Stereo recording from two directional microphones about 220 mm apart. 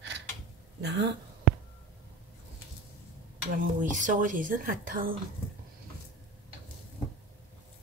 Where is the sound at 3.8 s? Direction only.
35° right (ahead or behind).